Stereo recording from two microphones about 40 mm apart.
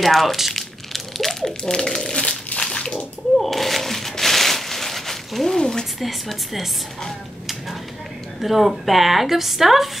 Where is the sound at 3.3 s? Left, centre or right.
Centre.